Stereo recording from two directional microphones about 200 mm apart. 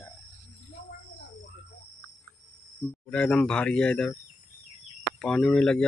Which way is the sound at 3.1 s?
5° left (ahead or behind).